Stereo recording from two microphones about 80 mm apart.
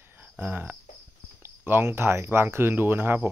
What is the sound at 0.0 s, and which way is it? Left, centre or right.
Cricket, right.